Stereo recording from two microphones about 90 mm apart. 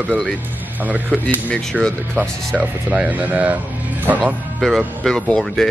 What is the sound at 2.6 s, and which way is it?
Speech, 15° right (ahead or behind).